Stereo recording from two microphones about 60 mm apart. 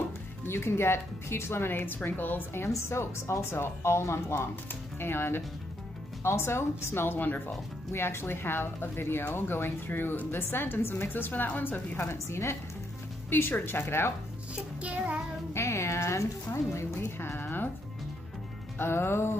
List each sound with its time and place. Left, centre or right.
0.5 s a woman's voice: left
7.9 s a woman's voice: left
12.0 s speech: left
13.3 s a woman's voice: left
14.5 s music: right
15.5 s speech: left
17.2 s a woman's voice: left
18.8 s a woman's voice: left